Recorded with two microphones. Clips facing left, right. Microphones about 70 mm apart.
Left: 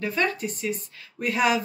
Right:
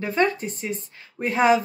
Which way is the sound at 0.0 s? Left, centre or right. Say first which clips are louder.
Right 3 dB; right.